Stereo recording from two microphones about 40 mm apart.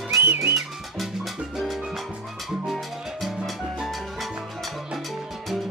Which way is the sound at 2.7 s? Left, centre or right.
Centre.